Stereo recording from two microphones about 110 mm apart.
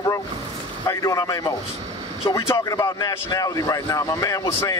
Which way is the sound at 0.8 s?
30° left (ahead or behind).